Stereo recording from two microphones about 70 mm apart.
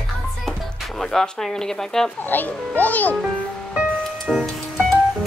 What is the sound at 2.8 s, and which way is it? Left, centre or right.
Speech, left.